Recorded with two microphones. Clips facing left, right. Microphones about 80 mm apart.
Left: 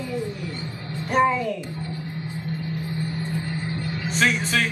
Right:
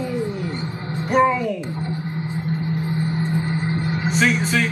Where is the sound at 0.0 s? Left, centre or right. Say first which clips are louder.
Right 5 dB; right.